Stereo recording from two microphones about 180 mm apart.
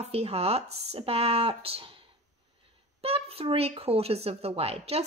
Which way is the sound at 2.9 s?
35° right (ahead or behind).